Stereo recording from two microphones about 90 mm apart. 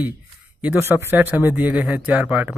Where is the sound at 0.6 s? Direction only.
20° right (ahead or behind).